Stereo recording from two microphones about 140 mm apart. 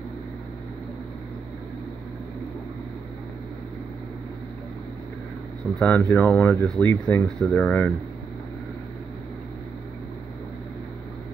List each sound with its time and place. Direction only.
5.8 s speech: 15° left (ahead or behind)